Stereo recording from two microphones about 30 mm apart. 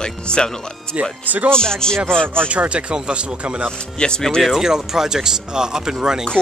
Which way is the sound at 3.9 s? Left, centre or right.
Left.